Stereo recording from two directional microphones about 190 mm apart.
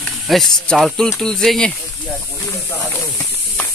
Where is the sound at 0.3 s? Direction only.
Centre (ahead or behind).